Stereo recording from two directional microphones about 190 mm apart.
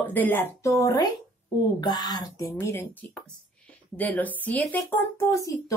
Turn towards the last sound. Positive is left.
turn(degrees=15)  # may be behind; listen again after turning